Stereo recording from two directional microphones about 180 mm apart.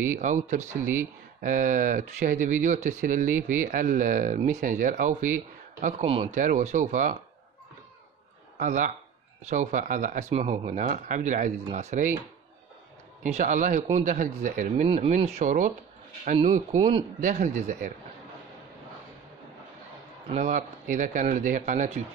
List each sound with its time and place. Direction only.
0.1 s speech: 45° right (ahead or behind)
8.5 s speech: 45° right (ahead or behind)
13.2 s speech: 45° right (ahead or behind)
20.3 s speech: 45° right (ahead or behind)